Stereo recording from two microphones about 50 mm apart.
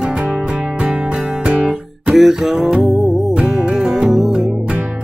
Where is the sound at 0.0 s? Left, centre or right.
Centre.